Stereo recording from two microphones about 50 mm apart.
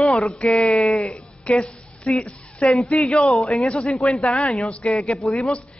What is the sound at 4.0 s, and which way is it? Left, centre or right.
A man's voice, centre.